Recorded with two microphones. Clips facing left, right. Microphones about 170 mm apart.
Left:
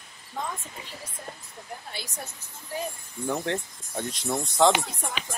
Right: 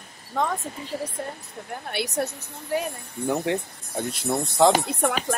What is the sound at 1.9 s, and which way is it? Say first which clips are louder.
A woman's voice: right 12 dB; 70° right (ahead or behind).